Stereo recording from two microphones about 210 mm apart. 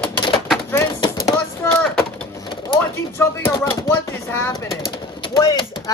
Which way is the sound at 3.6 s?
10° left (ahead or behind).